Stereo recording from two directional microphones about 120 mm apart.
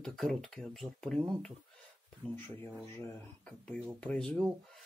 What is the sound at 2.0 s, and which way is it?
Speech, 20° left (ahead or behind).